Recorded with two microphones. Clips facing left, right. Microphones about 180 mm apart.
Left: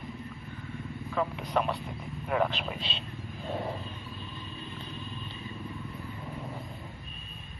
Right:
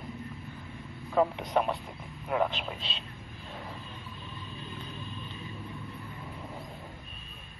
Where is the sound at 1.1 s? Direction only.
20° right (ahead or behind).